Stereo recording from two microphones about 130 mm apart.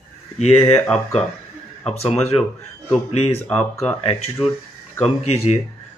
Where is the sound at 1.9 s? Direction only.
50° left (ahead or behind).